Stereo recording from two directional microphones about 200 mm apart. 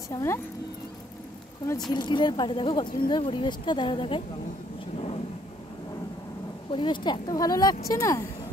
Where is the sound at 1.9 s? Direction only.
25° left (ahead or behind).